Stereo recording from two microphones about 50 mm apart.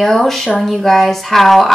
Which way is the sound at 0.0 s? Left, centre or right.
Centre.